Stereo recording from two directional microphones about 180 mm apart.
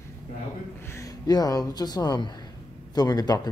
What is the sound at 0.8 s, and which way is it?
Speech, 15° left (ahead or behind).